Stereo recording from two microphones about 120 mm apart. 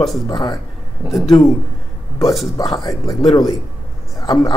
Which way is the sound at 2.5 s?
35° left (ahead or behind).